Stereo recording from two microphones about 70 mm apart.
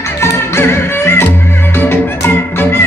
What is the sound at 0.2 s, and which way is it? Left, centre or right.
Music, left.